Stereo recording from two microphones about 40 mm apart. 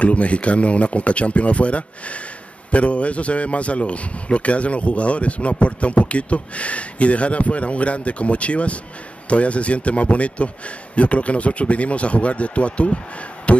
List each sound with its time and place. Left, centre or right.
0.0 s a man's voice: left
13.5 s music: left